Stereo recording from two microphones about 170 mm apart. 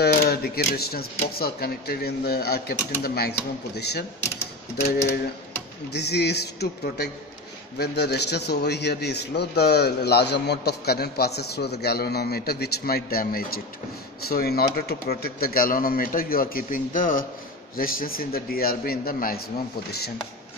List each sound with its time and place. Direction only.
0.0 s a man's voice: 65° left (ahead or behind)
5.9 s a man's voice: 75° left (ahead or behind); by 19.4 s 60° left (ahead or behind)